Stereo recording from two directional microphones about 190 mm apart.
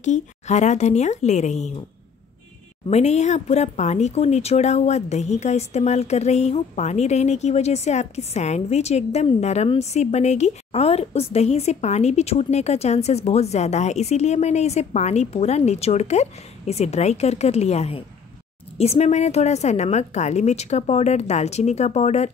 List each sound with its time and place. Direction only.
0.0 s speech: 40° left (ahead or behind)
2.9 s speech: 35° left (ahead or behind)